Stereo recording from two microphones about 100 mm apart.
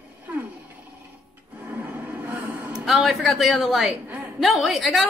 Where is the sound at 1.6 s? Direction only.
15° right (ahead or behind).